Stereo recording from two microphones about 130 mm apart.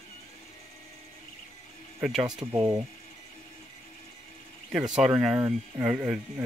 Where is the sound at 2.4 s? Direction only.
30° right (ahead or behind).